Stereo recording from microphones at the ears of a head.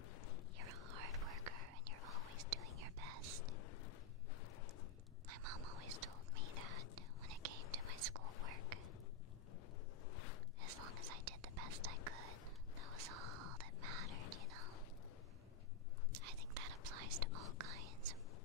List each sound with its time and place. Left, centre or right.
0.0 s a sound: left
0.6 s whispering: right
3.5 s a sound: left
5.3 s whispering: right
10.6 s whispering: right
16.1 s whispering: right